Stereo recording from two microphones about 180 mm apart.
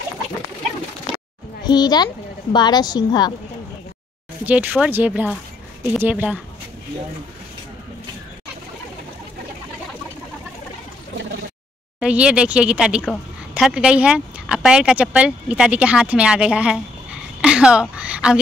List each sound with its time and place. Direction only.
1.6 s a child's voice: 25° left (ahead or behind)
4.5 s speech: 10° right (ahead or behind)
12.0 s speech: 5° right (ahead or behind)